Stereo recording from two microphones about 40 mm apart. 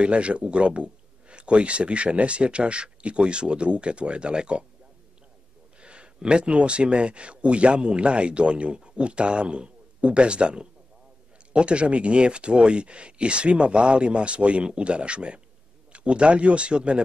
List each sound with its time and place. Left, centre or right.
0.0 s speech: right
5.8 s speech: right